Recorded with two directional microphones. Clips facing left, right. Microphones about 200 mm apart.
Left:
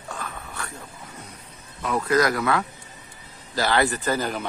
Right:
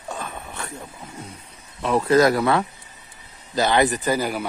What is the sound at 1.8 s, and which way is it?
A man's voice, 30° right (ahead or behind).